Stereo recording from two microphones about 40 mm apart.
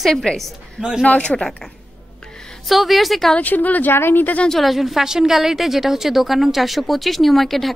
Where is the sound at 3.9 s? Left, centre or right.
Left.